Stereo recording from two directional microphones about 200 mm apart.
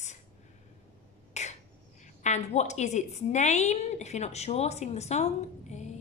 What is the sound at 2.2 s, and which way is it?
A woman's voice, 35° left (ahead or behind).